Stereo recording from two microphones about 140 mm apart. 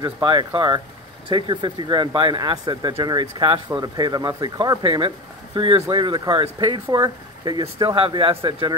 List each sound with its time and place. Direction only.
0.0 s speech: 35° right (ahead or behind)
7.6 s speech: 40° right (ahead or behind)